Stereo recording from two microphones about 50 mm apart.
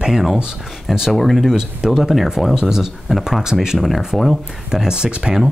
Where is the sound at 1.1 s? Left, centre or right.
Centre.